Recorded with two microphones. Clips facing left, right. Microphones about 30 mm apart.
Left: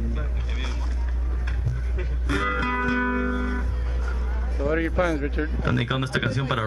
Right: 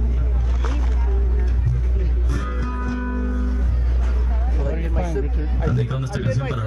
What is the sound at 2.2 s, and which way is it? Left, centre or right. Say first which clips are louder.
Music: left 8 dB; left.